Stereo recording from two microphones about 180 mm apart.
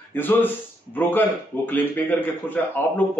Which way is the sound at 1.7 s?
10° left (ahead or behind).